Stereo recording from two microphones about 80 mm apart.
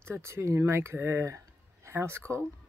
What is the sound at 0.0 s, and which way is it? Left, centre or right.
Speech, right.